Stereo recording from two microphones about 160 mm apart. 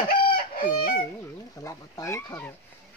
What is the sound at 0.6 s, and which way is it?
Chicken, 65° left (ahead or behind).